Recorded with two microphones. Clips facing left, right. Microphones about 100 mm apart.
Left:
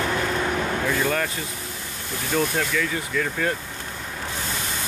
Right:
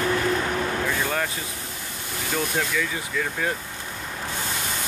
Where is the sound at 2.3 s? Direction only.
5° right (ahead or behind).